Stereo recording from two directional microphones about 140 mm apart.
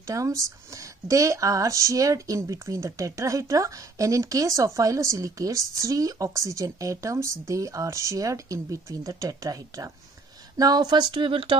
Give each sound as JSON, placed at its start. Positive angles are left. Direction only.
{"t": 0.0, "sound": "speech", "side_deg": -25}